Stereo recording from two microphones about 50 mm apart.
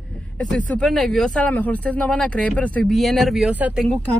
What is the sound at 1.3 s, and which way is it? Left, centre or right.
Speech, left.